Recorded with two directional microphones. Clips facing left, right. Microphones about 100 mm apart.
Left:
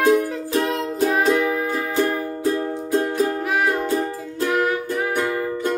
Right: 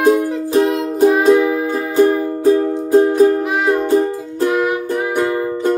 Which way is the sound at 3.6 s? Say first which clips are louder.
Right 8 dB; 20° right (ahead or behind).